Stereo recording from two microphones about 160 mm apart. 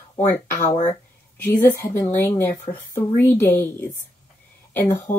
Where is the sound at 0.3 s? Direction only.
15° left (ahead or behind).